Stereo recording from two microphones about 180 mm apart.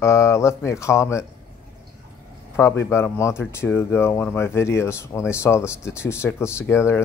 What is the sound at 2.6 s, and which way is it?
Speech, 15° left (ahead or behind).